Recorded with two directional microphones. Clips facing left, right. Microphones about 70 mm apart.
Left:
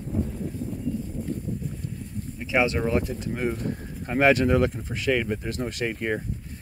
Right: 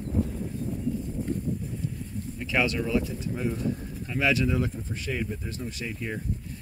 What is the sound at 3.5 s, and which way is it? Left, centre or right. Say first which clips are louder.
Speech: even; left.